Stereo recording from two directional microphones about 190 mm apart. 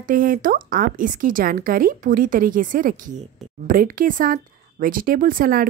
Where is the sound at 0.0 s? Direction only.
45° right (ahead or behind).